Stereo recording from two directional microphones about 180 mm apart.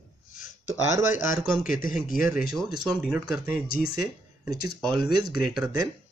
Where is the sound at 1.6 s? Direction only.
50° left (ahead or behind).